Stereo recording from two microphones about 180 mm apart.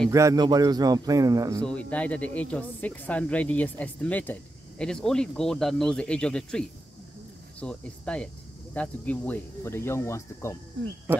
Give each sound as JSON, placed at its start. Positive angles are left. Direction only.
{"t": 0.1, "sound": "a man's voice", "side_deg": -20}
{"t": 1.6, "sound": "speech", "side_deg": 5}
{"t": 7.6, "sound": "speech", "side_deg": 5}